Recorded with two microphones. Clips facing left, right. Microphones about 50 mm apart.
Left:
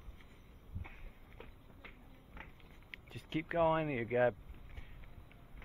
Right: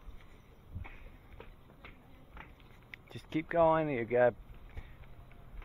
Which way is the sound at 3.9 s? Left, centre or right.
Centre.